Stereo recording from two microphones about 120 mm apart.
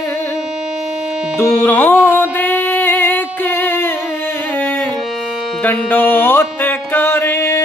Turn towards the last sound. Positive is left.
turn(degrees=20)  # may be behind; listen again after turning